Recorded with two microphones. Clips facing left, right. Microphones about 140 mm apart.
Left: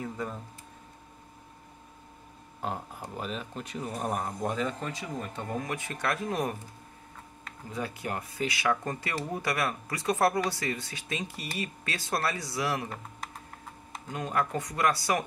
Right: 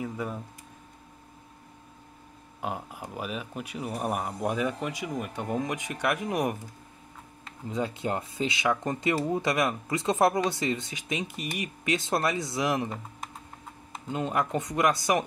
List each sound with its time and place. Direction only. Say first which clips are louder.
0.0 s speech: right 2 dB; 10° right (ahead or behind)
2.6 s speech: right 1 dB; 10° right (ahead or behind)
7.7 s speech: right 5 dB; 25° right (ahead or behind)
14.0 s speech: right 2 dB; 25° right (ahead or behind)